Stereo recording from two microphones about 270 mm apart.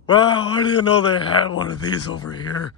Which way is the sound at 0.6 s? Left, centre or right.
Left.